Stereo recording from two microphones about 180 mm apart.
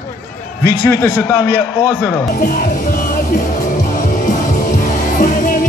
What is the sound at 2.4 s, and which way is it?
Music, 50° left (ahead or behind).